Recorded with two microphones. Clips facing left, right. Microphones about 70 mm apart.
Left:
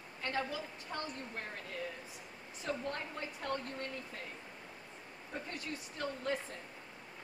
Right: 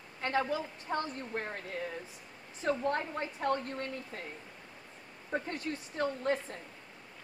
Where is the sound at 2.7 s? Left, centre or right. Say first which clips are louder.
Right 8 dB; right.